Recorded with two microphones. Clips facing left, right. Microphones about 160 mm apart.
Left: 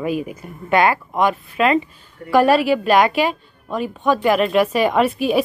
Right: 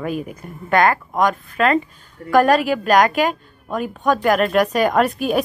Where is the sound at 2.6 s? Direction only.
45° right (ahead or behind).